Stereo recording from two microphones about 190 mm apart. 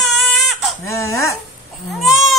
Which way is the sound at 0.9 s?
15° left (ahead or behind).